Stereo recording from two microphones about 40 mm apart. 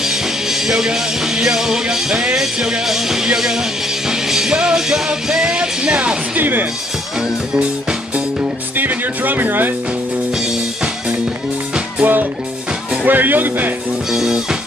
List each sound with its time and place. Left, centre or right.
0.0 s music: centre
6.3 s speech: right
8.7 s music: right
10.4 s music: centre
12.0 s music: right
13.0 s speech: right
14.1 s music: centre